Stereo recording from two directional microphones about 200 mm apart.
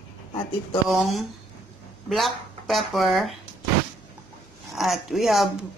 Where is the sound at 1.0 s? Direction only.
Centre (ahead or behind).